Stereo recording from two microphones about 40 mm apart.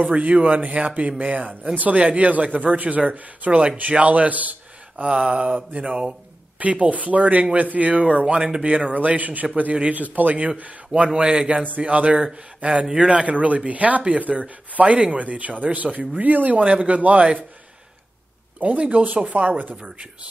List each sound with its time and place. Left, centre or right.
0.0 s speech: right
3.0 s a man's voice: right
5.0 s speech: right
7.9 s speech: right
11.1 s speech: right
11.6 s a man's voice: right
12.8 s speech: centre
13.2 s speech: right
18.6 s speech: right